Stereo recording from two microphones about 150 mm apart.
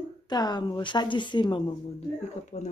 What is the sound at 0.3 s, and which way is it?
A woman's voice, 25° left (ahead or behind).